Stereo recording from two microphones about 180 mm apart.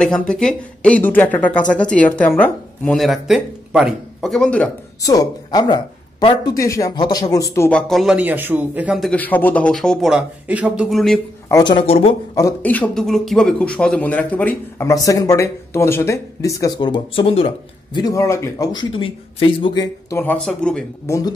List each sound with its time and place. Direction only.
0.0 s a man's voice: 5° left (ahead or behind)
5.0 s speech: 20° left (ahead or behind)
7.9 s a man's voice: centre (ahead or behind)
11.4 s speech: 20° left (ahead or behind)
12.4 s speech: 15° left (ahead or behind); by 17.5 s 30° left (ahead or behind)
17.9 s speech: 20° left (ahead or behind); by 20.8 s 5° left (ahead or behind)